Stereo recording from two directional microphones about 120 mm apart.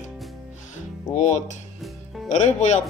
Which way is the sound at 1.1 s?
75° left (ahead or behind).